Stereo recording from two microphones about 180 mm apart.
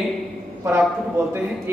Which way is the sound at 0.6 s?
10° right (ahead or behind).